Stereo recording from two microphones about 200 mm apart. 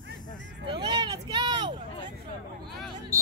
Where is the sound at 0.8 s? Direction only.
20° right (ahead or behind).